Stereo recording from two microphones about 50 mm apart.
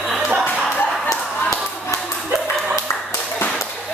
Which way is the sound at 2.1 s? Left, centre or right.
Centre.